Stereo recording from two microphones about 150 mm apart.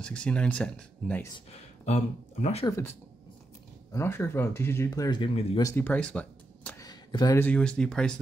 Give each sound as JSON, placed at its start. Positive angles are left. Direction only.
{"t": 0.0, "sound": "speech", "side_deg": 5}
{"t": 1.5, "sound": "speech", "side_deg": 45}
{"t": 2.6, "sound": "speech", "side_deg": 20}
{"t": 3.9, "sound": "speech", "side_deg": 15}
{"t": 5.6, "sound": "speech", "side_deg": 15}
{"t": 6.8, "sound": "a sound", "side_deg": 25}
{"t": 7.3, "sound": "speech", "side_deg": 10}